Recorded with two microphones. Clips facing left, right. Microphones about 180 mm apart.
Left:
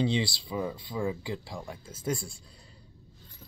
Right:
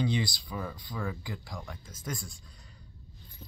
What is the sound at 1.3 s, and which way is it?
Speech, 30° left (ahead or behind).